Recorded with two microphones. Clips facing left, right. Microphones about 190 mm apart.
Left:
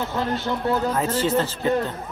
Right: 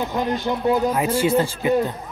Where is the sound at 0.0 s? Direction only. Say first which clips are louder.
Right 2 dB; 15° right (ahead or behind).